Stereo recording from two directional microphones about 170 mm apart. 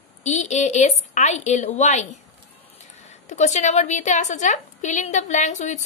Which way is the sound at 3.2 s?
45° left (ahead or behind).